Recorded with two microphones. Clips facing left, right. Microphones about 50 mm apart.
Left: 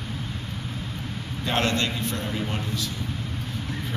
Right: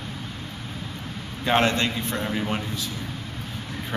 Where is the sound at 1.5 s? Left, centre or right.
Right.